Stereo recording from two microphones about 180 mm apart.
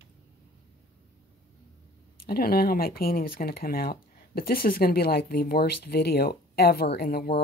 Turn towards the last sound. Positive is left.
turn(degrees=55)  # may be behind; listen again after turning